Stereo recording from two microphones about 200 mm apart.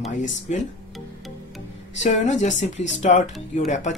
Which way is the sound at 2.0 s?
35° left (ahead or behind).